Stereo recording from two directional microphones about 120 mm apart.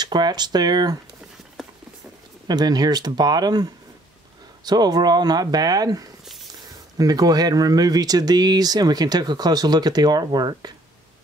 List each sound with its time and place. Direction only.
0.0 s speech: 35° right (ahead or behind)
2.4 s speech: 35° right (ahead or behind)